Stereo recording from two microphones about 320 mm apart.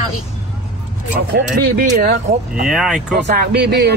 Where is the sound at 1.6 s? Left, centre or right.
Right.